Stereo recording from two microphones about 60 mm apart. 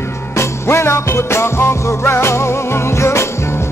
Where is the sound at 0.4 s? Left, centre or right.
Left.